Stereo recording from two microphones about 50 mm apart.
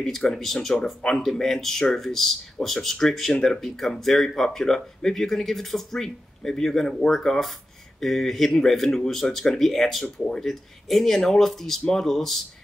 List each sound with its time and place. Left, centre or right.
0.0 s speech: centre
10.0 s speech: centre
10.4 s speech: centre